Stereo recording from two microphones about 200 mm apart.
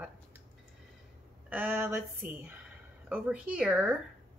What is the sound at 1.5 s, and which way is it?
Speech, 10° right (ahead or behind).